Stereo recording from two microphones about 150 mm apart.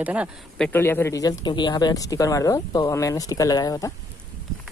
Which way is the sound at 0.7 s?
15° left (ahead or behind).